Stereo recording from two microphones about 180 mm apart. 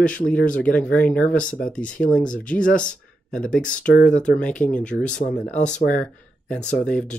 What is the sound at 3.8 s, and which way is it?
Speech, 45° left (ahead or behind).